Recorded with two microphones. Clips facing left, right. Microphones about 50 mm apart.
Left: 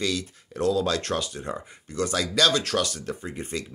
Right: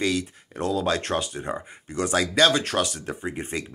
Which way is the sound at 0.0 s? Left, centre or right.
Right.